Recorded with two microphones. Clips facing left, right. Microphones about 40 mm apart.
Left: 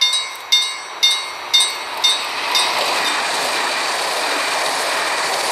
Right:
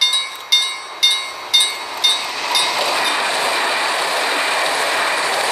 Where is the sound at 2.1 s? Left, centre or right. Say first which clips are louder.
Even; centre.